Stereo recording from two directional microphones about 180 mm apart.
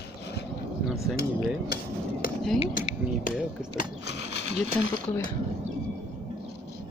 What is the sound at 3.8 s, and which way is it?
Ratchet, 70° left (ahead or behind).